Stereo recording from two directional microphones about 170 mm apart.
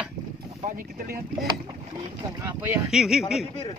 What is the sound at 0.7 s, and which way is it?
Speech, 55° right (ahead or behind).